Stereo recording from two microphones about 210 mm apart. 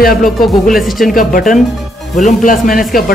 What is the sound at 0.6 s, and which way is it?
Speech, centre (ahead or behind).